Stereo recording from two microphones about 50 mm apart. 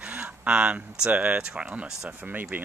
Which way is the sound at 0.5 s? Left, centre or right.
Right.